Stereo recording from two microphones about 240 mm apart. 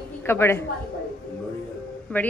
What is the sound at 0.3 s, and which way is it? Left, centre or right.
Speech, centre.